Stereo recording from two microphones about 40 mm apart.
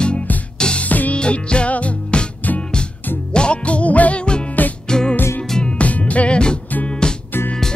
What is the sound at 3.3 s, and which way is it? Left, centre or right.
Music, left.